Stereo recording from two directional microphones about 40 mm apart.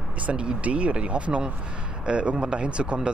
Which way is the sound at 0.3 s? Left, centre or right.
Right.